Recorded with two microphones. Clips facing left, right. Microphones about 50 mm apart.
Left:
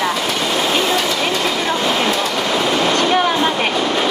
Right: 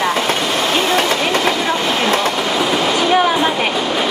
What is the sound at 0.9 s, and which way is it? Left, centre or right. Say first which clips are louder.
Vehicle: right 2 dB; right.